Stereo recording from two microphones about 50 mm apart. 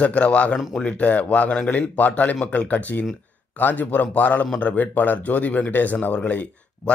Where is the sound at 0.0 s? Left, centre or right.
Left.